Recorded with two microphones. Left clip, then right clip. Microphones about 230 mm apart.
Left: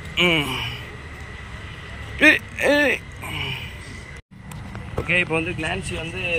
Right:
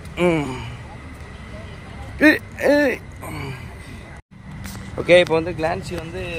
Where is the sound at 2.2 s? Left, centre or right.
Right.